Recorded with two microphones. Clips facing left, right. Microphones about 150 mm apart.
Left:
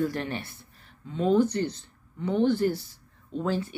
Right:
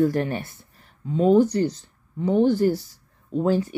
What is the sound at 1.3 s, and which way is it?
Speech, 40° right (ahead or behind).